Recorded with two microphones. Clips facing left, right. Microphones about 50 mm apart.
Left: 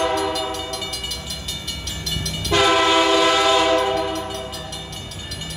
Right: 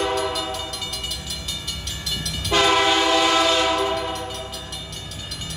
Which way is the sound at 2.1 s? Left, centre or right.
Centre.